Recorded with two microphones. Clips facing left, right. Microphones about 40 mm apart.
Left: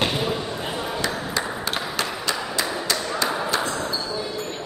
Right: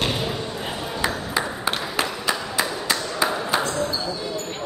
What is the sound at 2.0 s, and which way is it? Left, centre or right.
Clapping, centre.